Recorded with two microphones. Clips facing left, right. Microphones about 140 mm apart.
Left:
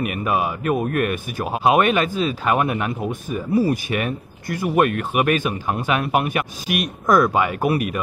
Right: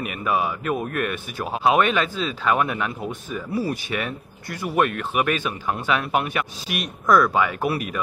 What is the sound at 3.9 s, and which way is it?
Speech, 45° left (ahead or behind).